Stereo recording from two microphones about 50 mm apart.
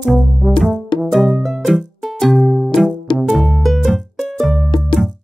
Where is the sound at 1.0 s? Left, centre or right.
Centre.